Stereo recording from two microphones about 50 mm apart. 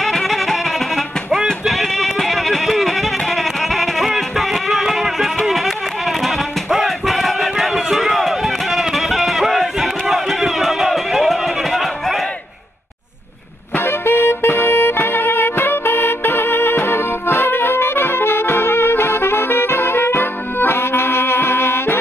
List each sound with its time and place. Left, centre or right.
0.0 s music: centre
1.7 s music: centre
8.7 s crowd: centre
13.8 s music: left